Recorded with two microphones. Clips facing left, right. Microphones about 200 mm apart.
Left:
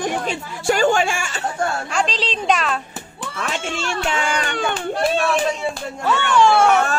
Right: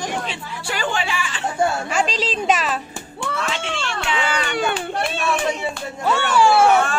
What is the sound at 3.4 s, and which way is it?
Speech, 45° left (ahead or behind).